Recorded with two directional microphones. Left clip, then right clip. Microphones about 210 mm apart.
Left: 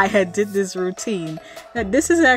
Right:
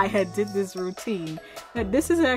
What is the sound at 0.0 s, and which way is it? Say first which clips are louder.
Speech: left 6 dB; 20° left (ahead or behind).